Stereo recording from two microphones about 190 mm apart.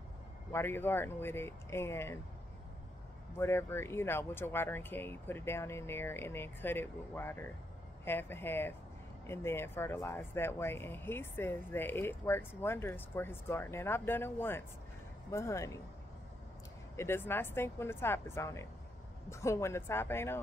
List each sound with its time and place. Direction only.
0.5 s speech: 10° left (ahead or behind)
3.3 s speech: 15° left (ahead or behind)
16.9 s speech: 15° left (ahead or behind)